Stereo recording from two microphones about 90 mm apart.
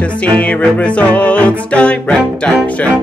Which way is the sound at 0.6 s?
15° left (ahead or behind).